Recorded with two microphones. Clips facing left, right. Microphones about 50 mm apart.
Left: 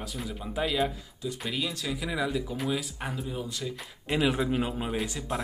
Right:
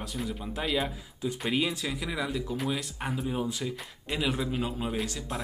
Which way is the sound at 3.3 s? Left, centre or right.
Right.